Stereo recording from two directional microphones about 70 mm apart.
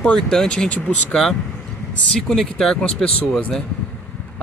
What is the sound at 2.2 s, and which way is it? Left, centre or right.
Speech, centre.